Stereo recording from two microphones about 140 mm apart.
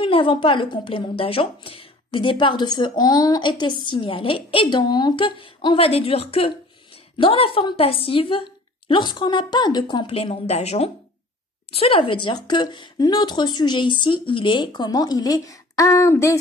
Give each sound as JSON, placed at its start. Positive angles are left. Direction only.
{"t": 0.0, "sound": "a woman's voice", "side_deg": 40}